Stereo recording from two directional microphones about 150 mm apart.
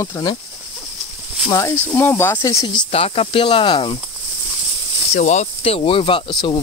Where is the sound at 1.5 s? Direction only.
20° left (ahead or behind).